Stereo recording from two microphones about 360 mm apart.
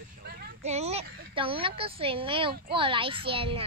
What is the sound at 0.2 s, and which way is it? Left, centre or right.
A woman's voice, centre.